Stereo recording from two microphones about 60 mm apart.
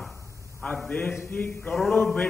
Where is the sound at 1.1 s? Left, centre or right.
Left.